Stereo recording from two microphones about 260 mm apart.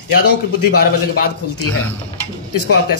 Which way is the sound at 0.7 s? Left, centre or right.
Left.